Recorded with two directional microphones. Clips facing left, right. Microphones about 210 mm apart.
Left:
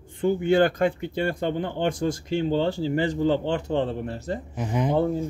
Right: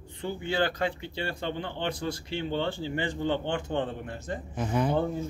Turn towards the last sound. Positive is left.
turn(degrees=15)  # may be behind; listen again after turning